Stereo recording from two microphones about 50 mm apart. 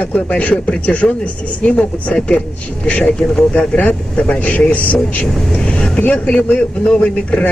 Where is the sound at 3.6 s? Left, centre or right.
Left.